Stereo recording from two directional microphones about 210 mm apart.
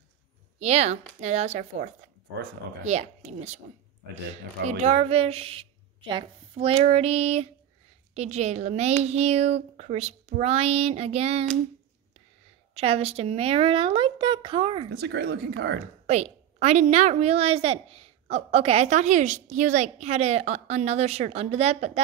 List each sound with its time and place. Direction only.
0.6 s a woman's voice: 30° right (ahead or behind)
4.6 s a woman's voice: 30° right (ahead or behind)
12.7 s a woman's voice: 30° right (ahead or behind)
14.9 s speech: 50° right (ahead or behind)
16.1 s a woman's voice: 30° right (ahead or behind)